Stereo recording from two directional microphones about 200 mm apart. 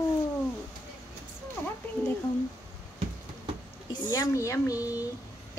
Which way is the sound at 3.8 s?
20° left (ahead or behind).